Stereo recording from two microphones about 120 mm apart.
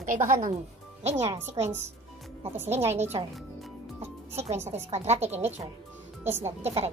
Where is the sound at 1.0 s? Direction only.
65° right (ahead or behind).